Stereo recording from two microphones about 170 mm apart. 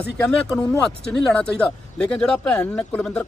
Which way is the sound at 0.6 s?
5° left (ahead or behind).